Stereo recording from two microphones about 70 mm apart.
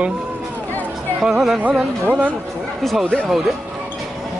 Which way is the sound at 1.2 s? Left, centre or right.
Centre.